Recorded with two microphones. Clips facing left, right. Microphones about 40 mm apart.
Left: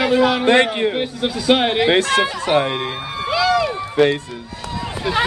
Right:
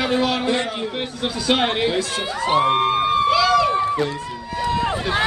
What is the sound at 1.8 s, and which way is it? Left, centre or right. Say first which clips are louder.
A man's voice: left 6 dB; left.